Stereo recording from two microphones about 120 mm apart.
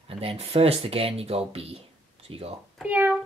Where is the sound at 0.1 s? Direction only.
50° right (ahead or behind).